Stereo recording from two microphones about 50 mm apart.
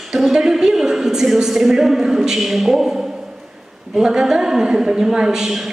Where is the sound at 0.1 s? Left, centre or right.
Centre.